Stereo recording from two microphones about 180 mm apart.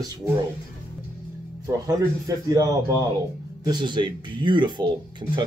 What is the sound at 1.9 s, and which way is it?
Speech, 20° right (ahead or behind).